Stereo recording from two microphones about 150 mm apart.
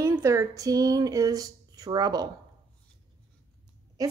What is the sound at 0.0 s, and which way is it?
Speech, 20° right (ahead or behind).